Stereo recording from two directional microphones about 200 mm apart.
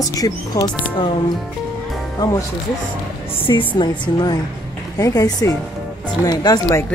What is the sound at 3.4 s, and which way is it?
A woman's voice, 25° left (ahead or behind).